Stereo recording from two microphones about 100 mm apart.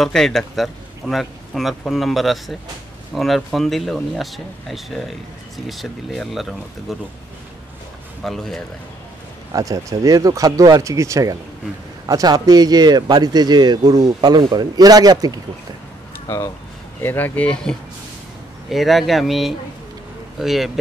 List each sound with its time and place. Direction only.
0.0 s a man's voice: 5° left (ahead or behind)
8.2 s a man's voice: 5° left (ahead or behind)
9.5 s speech: 35° right (ahead or behind)
16.3 s a man's voice: 30° left (ahead or behind); by 20.8 s centre (ahead or behind)